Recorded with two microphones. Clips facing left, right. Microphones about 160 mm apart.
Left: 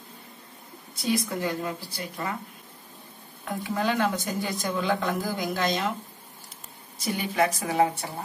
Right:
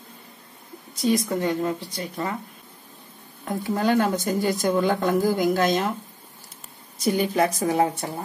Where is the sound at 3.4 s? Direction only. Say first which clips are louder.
Right 4 dB; 40° right (ahead or behind).